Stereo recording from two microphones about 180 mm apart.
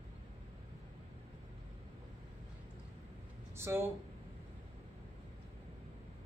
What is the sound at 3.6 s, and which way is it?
Speech, 15° right (ahead or behind).